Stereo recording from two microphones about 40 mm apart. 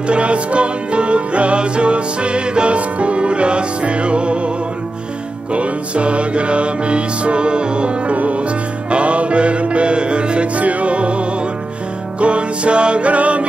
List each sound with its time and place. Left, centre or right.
0.0 s music: right
5.5 s music: right